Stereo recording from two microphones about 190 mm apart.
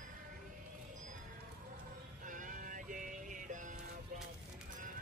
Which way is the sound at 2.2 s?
45° right (ahead or behind).